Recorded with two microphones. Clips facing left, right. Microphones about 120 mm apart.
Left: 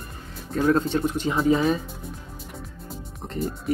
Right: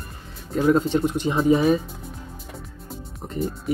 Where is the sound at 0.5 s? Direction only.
15° right (ahead or behind).